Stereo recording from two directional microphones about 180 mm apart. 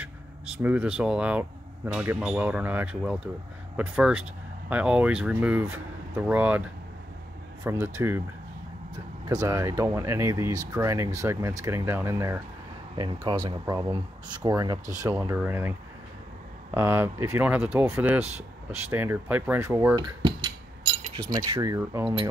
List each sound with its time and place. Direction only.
0.6 s speech: 10° right (ahead or behind)
9.3 s speech: 15° right (ahead or behind)
16.7 s speech: 15° right (ahead or behind)
21.2 s speech: 20° right (ahead or behind)